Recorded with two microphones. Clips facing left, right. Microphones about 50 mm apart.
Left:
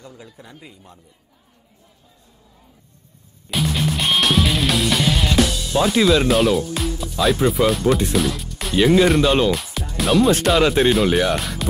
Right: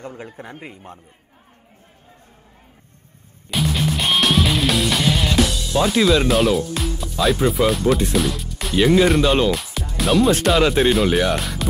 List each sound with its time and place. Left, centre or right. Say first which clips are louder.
0.0 s speech: right 7 dB; right
3.4 s music: even; centre